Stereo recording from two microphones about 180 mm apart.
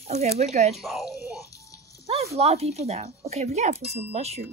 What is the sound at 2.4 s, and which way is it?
Speech, 35° right (ahead or behind).